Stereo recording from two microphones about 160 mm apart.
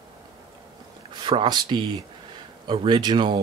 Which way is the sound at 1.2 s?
30° right (ahead or behind).